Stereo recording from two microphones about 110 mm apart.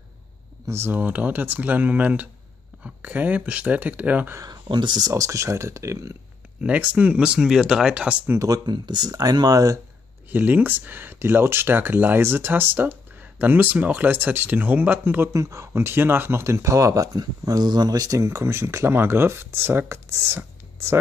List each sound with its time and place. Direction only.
0.7 s speech: 20° right (ahead or behind)
4.4 s speech: 40° right (ahead or behind)
6.6 s speech: 10° right (ahead or behind)
8.3 s speech: 30° right (ahead or behind)
10.3 s speech: 15° right (ahead or behind)
15.3 s speech: 30° right (ahead or behind)